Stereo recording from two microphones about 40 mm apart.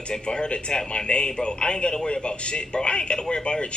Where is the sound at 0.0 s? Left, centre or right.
Left.